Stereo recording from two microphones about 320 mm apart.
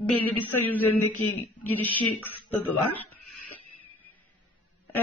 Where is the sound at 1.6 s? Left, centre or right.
Centre.